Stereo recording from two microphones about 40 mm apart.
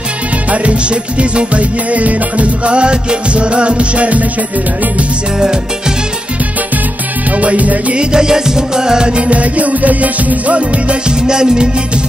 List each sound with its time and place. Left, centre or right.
0.5 s music: right
5.4 s music: centre
7.2 s music: right
7.9 s music: right
11.1 s music: centre